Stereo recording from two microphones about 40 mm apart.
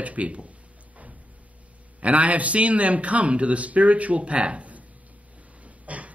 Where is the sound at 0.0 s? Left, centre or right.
Right.